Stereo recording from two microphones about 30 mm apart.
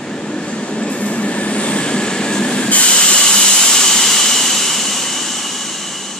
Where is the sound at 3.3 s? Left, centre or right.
Left.